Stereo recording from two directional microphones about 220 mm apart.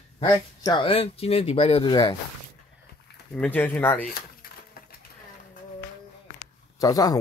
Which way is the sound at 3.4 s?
10° left (ahead or behind).